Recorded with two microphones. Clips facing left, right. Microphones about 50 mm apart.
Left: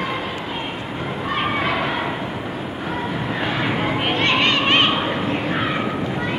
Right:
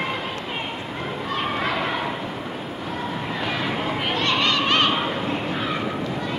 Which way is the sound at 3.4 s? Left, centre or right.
Left.